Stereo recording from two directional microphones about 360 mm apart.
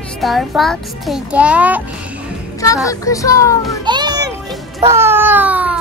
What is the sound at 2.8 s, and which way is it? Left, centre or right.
A child's voice, centre.